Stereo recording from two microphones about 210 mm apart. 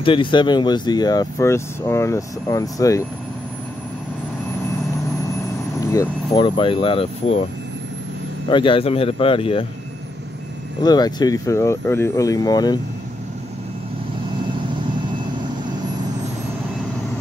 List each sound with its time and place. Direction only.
0.0 s speech: 25° left (ahead or behind)
5.8 s speech: 15° left (ahead or behind)
8.5 s speech: 25° left (ahead or behind)
10.8 s speech: 20° left (ahead or behind)